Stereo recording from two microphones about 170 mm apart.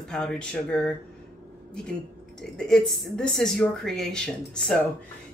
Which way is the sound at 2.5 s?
5° left (ahead or behind).